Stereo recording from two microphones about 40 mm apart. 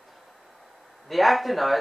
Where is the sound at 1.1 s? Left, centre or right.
Centre.